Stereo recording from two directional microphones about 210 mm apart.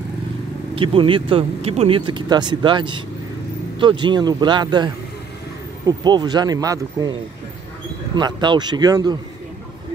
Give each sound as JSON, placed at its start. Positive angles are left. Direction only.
{"t": 0.7, "sound": "speech", "side_deg": -25}